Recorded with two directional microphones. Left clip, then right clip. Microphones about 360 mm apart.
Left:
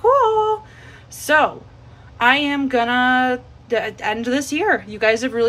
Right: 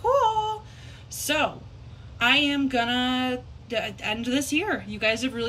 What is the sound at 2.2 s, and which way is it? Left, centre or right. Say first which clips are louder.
Speech: left 5 dB; centre.